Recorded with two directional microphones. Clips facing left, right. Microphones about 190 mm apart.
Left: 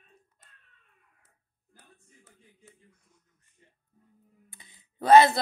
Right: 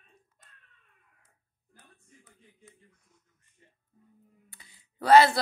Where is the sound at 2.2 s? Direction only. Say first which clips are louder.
Left 1 dB; 5° left (ahead or behind).